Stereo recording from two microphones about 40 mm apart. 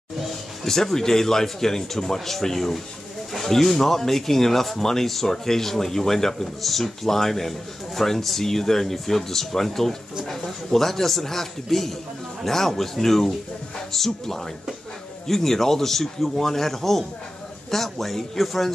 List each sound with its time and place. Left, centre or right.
0.7 s speech: centre